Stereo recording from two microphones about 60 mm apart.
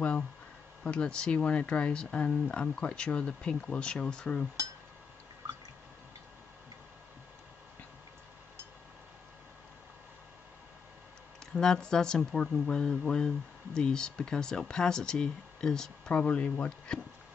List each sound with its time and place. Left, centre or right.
0.8 s speech: centre
11.5 s speech: centre
16.2 s speech: left